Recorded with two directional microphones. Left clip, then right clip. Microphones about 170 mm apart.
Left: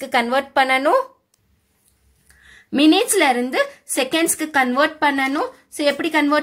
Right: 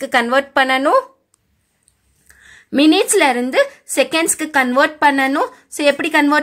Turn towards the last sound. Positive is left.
turn(degrees=-25)  # may be behind; listen again after turning